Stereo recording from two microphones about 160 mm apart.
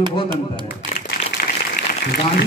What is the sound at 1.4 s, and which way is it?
Applause, 70° left (ahead or behind).